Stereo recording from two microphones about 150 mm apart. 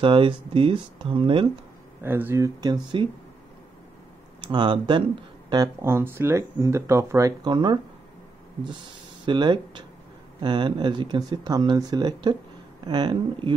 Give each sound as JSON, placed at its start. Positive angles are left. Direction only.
{"t": 0.0, "sound": "speech", "side_deg": -35}
{"t": 2.0, "sound": "speech", "side_deg": -15}
{"t": 4.4, "sound": "speech", "side_deg": -30}
{"t": 5.8, "sound": "speech", "side_deg": -15}
{"t": 9.2, "sound": "speech", "side_deg": -30}